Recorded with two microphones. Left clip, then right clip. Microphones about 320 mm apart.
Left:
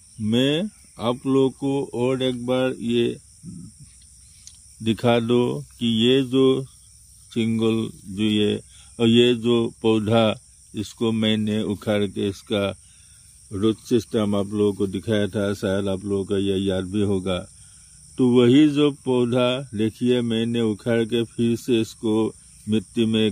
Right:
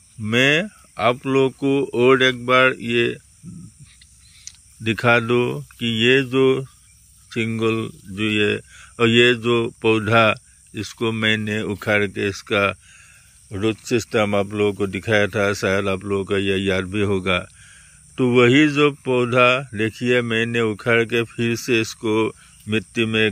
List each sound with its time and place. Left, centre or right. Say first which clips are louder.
0.3 s speech: right 5 dB; centre
4.5 s speech: right 2 dB; centre
22.1 s speech: right 3 dB; centre
22.7 s speech: right 2 dB; centre